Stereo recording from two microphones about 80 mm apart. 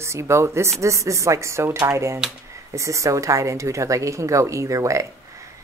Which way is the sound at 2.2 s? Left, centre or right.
Centre.